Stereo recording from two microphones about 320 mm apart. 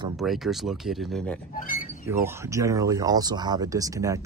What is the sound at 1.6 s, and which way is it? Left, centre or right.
Speech, left.